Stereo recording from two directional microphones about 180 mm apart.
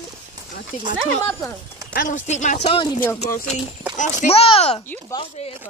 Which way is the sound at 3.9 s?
45° left (ahead or behind).